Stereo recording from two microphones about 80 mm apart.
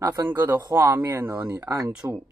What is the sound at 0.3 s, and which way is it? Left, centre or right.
Speech, right.